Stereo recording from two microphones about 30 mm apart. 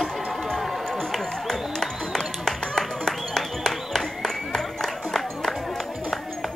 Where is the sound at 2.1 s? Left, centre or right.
Centre.